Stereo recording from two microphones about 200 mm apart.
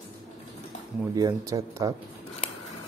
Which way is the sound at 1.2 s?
15° right (ahead or behind).